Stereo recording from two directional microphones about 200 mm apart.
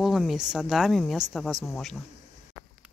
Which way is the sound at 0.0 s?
Centre (ahead or behind).